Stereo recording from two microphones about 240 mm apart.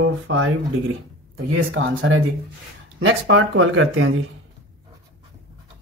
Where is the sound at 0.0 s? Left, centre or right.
Right.